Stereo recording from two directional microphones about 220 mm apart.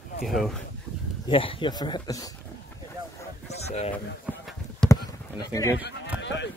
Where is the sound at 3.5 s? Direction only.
30° left (ahead or behind).